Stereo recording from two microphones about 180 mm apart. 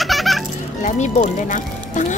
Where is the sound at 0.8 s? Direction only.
45° left (ahead or behind).